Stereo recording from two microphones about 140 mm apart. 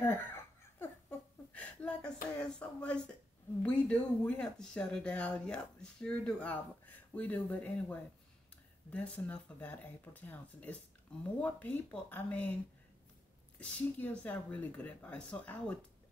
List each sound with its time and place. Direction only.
0.0 s laughter: 15° left (ahead or behind)
1.5 s a sound: 10° left (ahead or behind)
2.3 s speech: 5° left (ahead or behind)
13.6 s speech: 10° left (ahead or behind)